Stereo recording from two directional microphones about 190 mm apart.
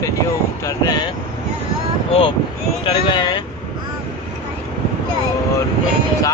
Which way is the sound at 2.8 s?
25° left (ahead or behind).